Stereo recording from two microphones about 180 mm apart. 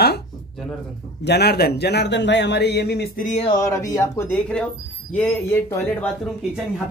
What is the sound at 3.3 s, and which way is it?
Music, 35° left (ahead or behind).